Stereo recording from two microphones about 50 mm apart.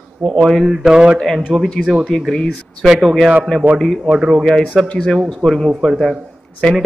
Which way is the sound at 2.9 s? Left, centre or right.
Centre.